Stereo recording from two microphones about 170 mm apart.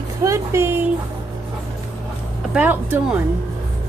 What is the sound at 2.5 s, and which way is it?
Speech, 10° right (ahead or behind).